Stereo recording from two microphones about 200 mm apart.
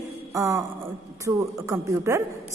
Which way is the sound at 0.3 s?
15° right (ahead or behind).